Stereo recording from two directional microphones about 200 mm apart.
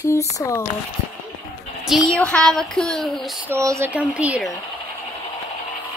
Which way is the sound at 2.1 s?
5° left (ahead or behind).